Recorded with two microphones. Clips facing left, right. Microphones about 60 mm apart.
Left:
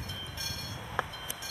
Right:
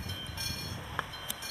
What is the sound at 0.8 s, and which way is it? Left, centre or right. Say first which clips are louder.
Vehicle: left 4 dB; centre.